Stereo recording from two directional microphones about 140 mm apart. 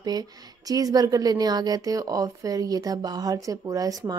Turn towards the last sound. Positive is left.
turn(degrees=-25)  # may be behind; listen again after turning